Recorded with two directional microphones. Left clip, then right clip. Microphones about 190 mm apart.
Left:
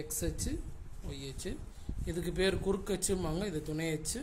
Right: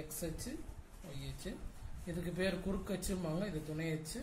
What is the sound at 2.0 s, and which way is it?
Speech, 55° left (ahead or behind).